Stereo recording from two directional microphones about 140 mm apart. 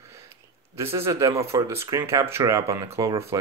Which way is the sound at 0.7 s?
20° right (ahead or behind).